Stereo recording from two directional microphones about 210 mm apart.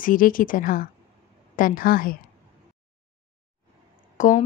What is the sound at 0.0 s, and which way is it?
A woman's voice, 40° left (ahead or behind).